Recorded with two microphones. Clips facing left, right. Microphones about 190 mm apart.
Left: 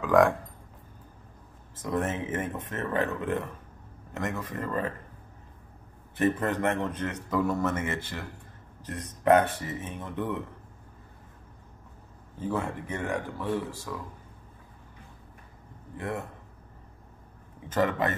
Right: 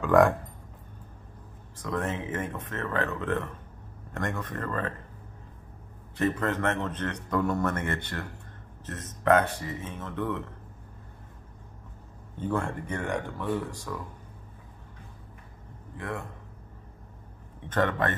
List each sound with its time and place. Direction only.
0.0 s a man's voice: centre (ahead or behind)
1.8 s speech: 20° left (ahead or behind)
6.1 s a man's voice: 15° left (ahead or behind); by 8.3 s centre (ahead or behind)
8.8 s speech: 15° left (ahead or behind)
12.4 s a man's voice: 5° left (ahead or behind)
16.0 s speech: 20° left (ahead or behind)
17.6 s a man's voice: 5° left (ahead or behind)